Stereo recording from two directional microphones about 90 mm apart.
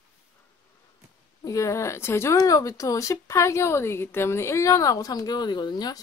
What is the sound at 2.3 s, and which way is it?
A woman's voice, 40° left (ahead or behind).